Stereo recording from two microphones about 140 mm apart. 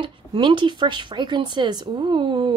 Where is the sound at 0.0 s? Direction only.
35° right (ahead or behind).